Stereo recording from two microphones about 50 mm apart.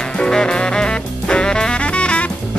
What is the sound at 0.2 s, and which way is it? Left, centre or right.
Music, centre.